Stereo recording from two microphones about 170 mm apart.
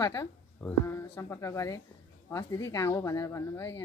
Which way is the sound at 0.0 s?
20° left (ahead or behind).